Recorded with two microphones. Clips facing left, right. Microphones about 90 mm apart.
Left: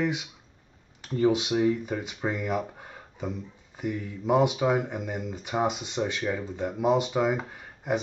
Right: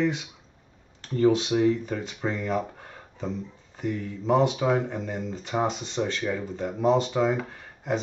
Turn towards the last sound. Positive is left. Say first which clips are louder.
# even
turn(degrees=10)  # may be behind; listen again after turning